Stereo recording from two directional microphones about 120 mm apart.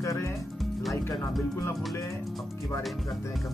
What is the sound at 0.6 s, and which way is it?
Music, centre (ahead or behind).